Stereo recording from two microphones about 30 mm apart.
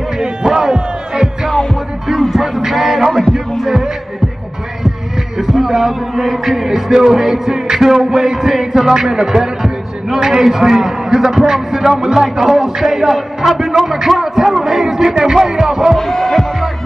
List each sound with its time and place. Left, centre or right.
0.5 s music: right
1.5 s music: left
2.3 s music: centre
5.4 s a sound: centre
6.4 s a man's voice: centre
9.6 s a sound: centre
10.6 s a man's voice: centre
16.0 s speech: centre